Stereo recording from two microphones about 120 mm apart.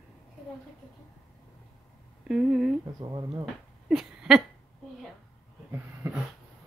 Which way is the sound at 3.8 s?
5° right (ahead or behind).